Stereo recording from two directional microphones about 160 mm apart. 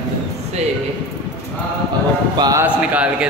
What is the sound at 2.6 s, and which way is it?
Speech, 10° right (ahead or behind).